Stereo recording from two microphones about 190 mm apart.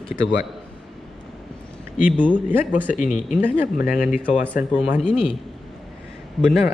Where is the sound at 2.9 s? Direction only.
40° left (ahead or behind).